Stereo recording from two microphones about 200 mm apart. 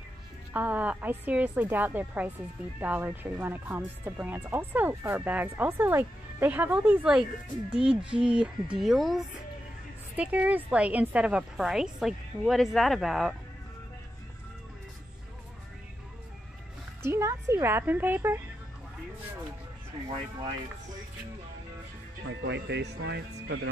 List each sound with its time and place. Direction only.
0.5 s a woman's voice: 10° right (ahead or behind)
17.0 s speech: 15° right (ahead or behind)
22.3 s speech: 60° right (ahead or behind)